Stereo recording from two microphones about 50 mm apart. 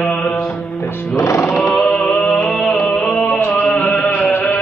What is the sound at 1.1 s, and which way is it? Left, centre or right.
Music, left.